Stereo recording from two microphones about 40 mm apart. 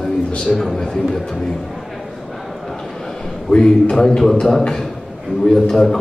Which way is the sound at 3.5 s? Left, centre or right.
Centre.